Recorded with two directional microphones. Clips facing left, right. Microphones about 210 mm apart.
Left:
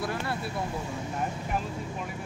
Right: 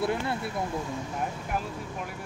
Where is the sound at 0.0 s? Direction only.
20° right (ahead or behind).